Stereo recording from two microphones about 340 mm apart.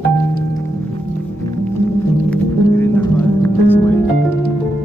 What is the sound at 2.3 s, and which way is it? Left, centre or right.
Music, centre.